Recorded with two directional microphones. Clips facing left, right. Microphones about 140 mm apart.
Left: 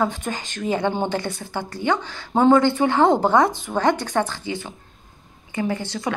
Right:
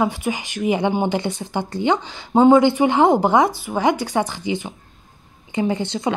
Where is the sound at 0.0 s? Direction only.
10° right (ahead or behind).